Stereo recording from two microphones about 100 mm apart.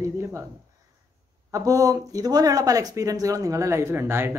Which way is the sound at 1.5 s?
35° right (ahead or behind).